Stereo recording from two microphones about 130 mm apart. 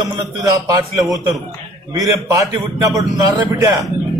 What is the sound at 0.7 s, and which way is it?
A man's voice, 25° right (ahead or behind).